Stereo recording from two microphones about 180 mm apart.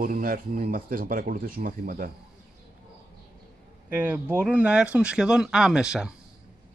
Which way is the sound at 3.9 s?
10° right (ahead or behind).